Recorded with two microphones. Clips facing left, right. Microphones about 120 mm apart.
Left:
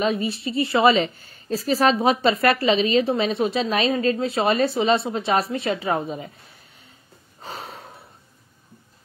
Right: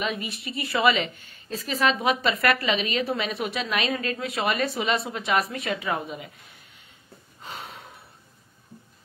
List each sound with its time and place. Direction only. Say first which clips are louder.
0.0 s a woman's voice: left 7 dB; 35° left (ahead or behind)
7.4 s snort: left 4 dB; 35° left (ahead or behind)